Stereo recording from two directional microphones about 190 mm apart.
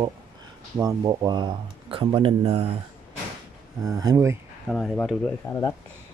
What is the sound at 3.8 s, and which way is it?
Speech, 20° right (ahead or behind).